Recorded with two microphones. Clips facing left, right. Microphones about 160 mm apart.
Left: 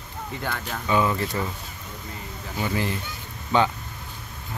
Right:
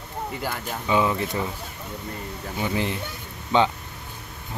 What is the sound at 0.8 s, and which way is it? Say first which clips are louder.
Speech: right 1 dB; 15° right (ahead or behind).